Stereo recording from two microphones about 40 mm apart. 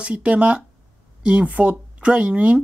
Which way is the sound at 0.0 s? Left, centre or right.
Right.